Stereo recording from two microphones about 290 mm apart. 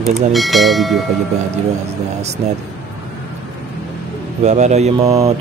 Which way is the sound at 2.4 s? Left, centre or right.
Right.